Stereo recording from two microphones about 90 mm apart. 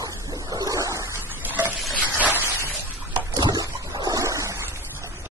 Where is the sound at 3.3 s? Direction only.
45° right (ahead or behind).